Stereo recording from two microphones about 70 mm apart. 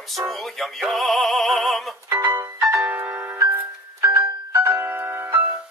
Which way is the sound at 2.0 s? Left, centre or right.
Right.